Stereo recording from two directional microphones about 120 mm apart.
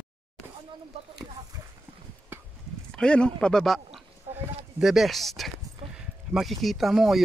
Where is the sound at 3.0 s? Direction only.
10° left (ahead or behind).